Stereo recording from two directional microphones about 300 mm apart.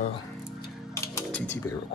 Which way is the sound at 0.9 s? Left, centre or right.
Centre.